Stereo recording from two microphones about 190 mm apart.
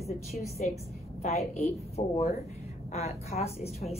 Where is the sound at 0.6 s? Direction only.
40° left (ahead or behind).